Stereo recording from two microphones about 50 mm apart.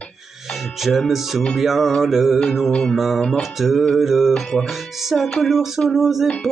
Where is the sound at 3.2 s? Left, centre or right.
Centre.